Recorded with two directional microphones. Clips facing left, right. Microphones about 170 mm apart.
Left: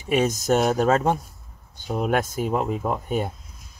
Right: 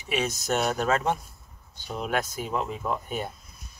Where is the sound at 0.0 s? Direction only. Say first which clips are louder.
Left 7 dB; 50° left (ahead or behind).